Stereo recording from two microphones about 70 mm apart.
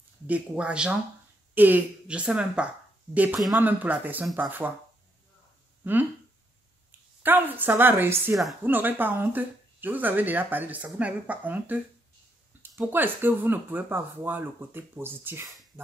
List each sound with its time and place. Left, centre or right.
0.3 s speech: centre
1.5 s speech: right
2.0 s speech: centre
5.8 s a woman's voice: right